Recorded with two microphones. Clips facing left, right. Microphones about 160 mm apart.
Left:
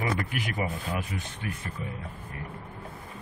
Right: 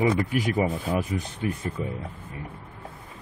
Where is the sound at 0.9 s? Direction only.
40° right (ahead or behind).